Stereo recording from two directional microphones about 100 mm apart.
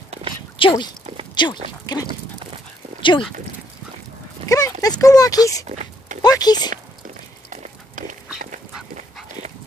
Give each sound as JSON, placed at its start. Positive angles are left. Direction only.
{"t": 0.6, "sound": "speech", "side_deg": 55}
{"t": 1.3, "sound": "a sound", "side_deg": 50}
{"t": 3.0, "sound": "dog", "side_deg": 55}
{"t": 4.5, "sound": "speech", "side_deg": 35}